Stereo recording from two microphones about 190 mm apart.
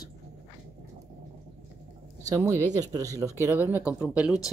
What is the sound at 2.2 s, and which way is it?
Speech, 15° right (ahead or behind).